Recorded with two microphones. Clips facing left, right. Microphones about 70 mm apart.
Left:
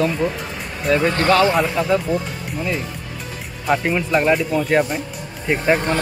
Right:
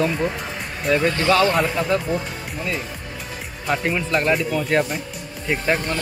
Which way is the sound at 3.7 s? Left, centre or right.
Centre.